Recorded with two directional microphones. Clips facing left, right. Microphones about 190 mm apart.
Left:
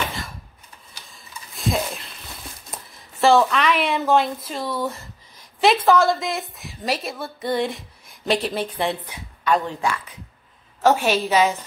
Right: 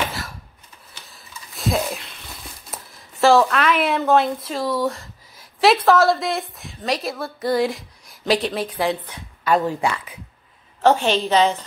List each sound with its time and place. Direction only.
1.1 s a sound: centre (ahead or behind)
2.7 s a woman's voice: centre (ahead or behind)
10.8 s a woman's voice: 10° left (ahead or behind)